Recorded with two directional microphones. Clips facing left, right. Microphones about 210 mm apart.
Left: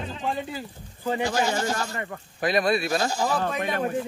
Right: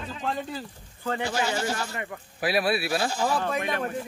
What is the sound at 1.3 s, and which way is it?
Speech, 45° left (ahead or behind).